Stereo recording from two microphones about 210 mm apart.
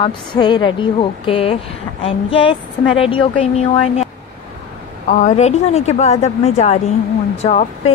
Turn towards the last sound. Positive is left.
turn(degrees=30)  # may be behind; listen again after turning